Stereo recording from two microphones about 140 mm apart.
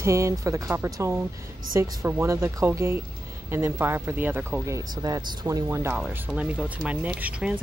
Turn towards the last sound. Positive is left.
turn(degrees=-10)  # may be behind; listen again after turning